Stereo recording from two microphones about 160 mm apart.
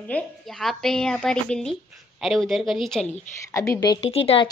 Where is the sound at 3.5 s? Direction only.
20° left (ahead or behind).